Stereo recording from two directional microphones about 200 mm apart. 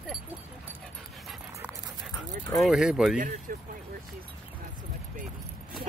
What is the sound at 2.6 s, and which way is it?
Speech, centre (ahead or behind).